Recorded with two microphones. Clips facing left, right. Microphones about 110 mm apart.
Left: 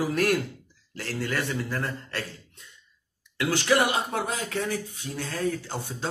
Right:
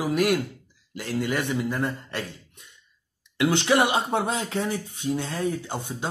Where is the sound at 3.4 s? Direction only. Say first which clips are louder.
Right 2 dB; 20° right (ahead or behind).